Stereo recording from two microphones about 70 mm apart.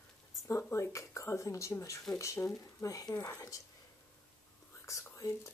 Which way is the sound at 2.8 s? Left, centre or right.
Left.